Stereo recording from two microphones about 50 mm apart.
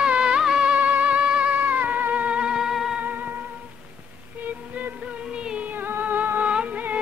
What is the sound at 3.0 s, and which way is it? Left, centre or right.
Music, right.